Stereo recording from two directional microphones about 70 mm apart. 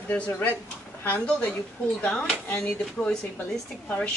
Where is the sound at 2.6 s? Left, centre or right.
Centre.